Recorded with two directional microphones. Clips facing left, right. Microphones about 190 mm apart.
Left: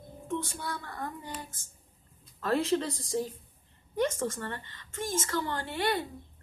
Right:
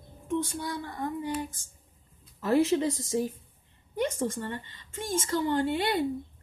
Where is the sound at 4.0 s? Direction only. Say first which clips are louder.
Right 1 dB; 15° right (ahead or behind).